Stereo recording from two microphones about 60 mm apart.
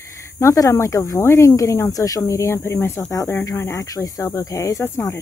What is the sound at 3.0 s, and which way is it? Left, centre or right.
Speech, left.